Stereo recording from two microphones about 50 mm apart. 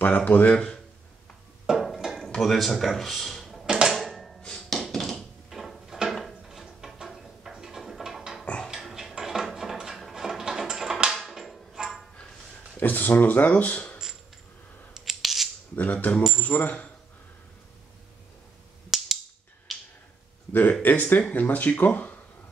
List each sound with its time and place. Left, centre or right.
0.0 s speech: left
0.5 s speech: centre
1.7 s a sound: centre
2.3 s speech: centre
3.9 s music: centre
4.4 s music: centre
4.9 s a sound: centre
5.5 s a sound: centre
11.1 s music: centre
12.7 s speech: left
15.0 s scissors: centre
15.7 s speech: left
18.9 s a sound: centre
20.8 s speech: left